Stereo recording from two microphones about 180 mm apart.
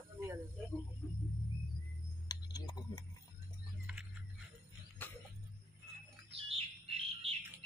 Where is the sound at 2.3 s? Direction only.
20° left (ahead or behind).